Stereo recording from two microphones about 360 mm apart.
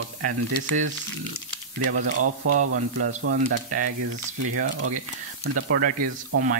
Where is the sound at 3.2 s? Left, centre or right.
Right.